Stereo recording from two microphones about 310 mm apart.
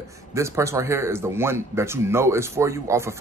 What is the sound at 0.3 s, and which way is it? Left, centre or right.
Speech, centre.